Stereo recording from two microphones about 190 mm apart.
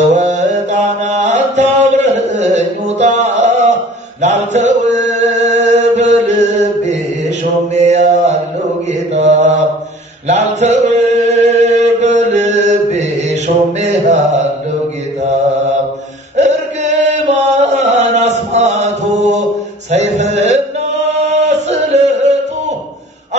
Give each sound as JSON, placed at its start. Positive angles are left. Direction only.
{"t": 0.1, "sound": "mantra", "side_deg": -40}
{"t": 4.2, "sound": "chant", "side_deg": -40}
{"t": 9.1, "sound": "mantra", "side_deg": -35}
{"t": 10.2, "sound": "chant", "side_deg": -35}
{"t": 16.3, "sound": "chant", "side_deg": -40}
{"t": 19.9, "sound": "a sound", "side_deg": -35}
{"t": 21.1, "sound": "chant", "side_deg": -35}